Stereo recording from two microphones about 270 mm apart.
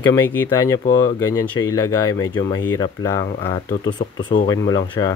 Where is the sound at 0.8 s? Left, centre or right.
Left.